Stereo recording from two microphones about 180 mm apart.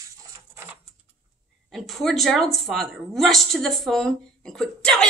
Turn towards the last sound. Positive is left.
turn(degrees=5)  # may be behind; listen again after turning